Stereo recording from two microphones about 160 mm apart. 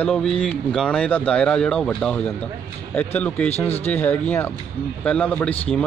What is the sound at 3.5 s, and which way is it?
Speech, 40° left (ahead or behind).